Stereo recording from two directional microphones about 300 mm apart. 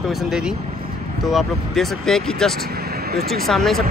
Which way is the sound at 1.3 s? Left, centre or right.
Centre.